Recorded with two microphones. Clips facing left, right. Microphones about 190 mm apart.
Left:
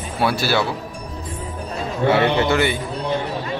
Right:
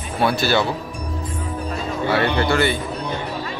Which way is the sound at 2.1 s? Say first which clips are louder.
Left 2 dB; 20° left (ahead or behind).